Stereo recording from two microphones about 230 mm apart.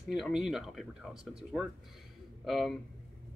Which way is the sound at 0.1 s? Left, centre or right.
Centre.